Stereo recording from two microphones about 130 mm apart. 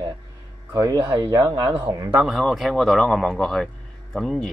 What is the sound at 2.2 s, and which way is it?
Speech, centre (ahead or behind).